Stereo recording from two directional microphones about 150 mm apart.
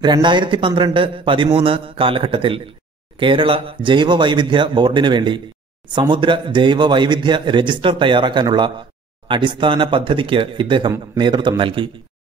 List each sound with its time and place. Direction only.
0.0 s a man's voice: 30° right (ahead or behind)